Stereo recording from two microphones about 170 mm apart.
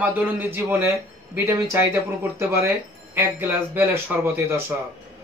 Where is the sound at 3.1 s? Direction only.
10° right (ahead or behind).